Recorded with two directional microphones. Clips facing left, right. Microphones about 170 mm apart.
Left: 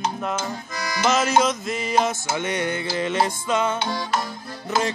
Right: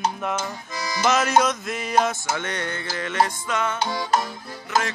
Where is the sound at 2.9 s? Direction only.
25° left (ahead or behind).